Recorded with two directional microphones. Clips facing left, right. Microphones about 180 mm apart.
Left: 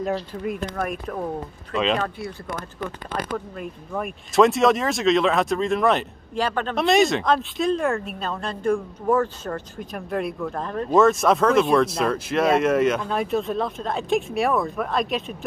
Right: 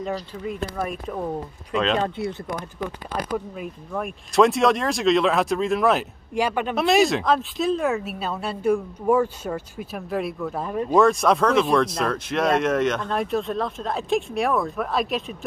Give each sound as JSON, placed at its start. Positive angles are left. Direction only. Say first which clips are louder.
{"t": 0.6, "sound": "speech", "louder": "left 1 dB", "side_deg": -5}
{"t": 2.0, "sound": "speech", "louder": "right 3 dB", "side_deg": -25}
{"t": 3.3, "sound": "speech", "louder": "right 1 dB", "side_deg": -5}
{"t": 6.3, "sound": "speech", "louder": "right 1 dB", "side_deg": -10}
{"t": 6.8, "sound": "speech", "louder": "even", "side_deg": 0}
{"t": 11.0, "sound": "speech", "louder": "left 1 dB", "side_deg": 0}